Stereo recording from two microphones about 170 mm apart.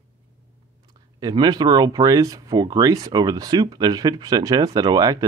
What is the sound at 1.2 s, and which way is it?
Speech, 25° right (ahead or behind).